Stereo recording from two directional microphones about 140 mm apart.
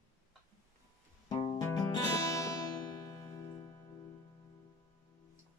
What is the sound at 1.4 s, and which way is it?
Music, 30° left (ahead or behind).